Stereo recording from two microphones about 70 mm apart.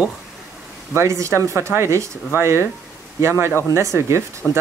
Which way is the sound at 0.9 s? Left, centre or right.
Right.